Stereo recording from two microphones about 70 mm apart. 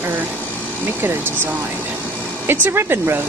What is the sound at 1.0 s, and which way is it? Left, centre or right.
Speech, right.